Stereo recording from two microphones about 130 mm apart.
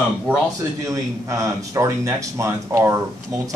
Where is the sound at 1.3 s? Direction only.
25° right (ahead or behind).